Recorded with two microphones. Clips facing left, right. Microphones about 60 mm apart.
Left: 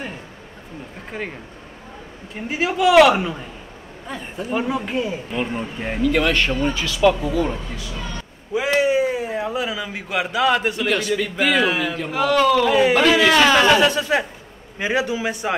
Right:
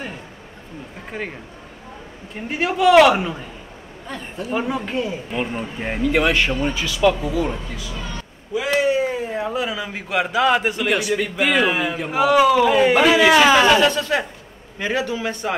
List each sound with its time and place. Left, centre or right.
1.1 s a man's voice: centre
2.3 s a man's voice: centre
5.4 s a man's voice: centre
8.5 s speech: left
8.8 s a sound: centre
9.4 s a man's voice: centre
13.7 s a man's voice: centre